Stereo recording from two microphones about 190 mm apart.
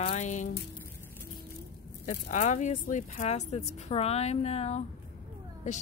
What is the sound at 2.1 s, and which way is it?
Speech, 40° left (ahead or behind).